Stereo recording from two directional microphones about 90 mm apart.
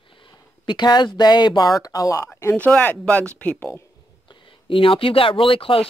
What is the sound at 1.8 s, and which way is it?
Speech, 40° left (ahead or behind).